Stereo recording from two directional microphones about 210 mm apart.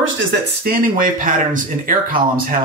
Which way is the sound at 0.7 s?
40° right (ahead or behind).